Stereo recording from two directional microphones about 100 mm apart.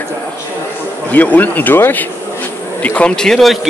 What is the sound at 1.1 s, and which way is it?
Speech, 15° left (ahead or behind).